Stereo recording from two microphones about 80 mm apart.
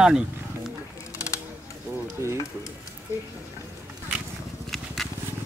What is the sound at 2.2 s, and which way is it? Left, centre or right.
Stir, right.